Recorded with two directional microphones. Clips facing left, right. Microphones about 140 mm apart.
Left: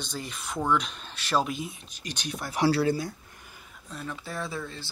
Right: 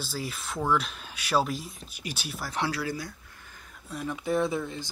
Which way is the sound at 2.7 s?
30° left (ahead or behind).